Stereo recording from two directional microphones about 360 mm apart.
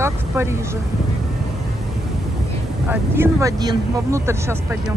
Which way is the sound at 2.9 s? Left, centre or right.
Centre.